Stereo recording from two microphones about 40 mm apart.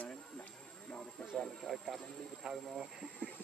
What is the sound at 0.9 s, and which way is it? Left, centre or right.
Snake, left.